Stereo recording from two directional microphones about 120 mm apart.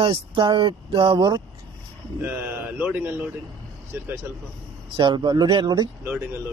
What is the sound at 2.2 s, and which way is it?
Speech, 15° right (ahead or behind).